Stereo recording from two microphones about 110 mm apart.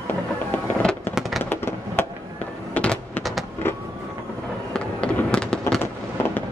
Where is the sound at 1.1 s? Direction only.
Centre (ahead or behind).